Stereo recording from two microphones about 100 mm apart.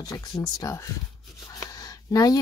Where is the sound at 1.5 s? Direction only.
35° left (ahead or behind).